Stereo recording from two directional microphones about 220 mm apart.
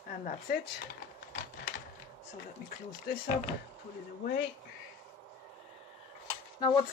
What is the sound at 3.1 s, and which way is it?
Speech, 45° left (ahead or behind).